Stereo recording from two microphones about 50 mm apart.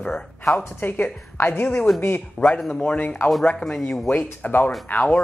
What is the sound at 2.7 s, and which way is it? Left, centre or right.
Speech, left.